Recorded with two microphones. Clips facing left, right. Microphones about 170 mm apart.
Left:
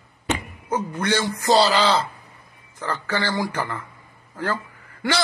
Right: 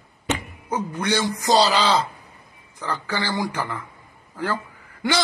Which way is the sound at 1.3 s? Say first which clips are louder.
Left 1 dB; 15° right (ahead or behind).